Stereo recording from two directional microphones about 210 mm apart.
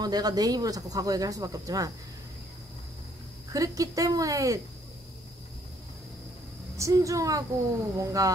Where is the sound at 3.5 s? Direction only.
15° right (ahead or behind).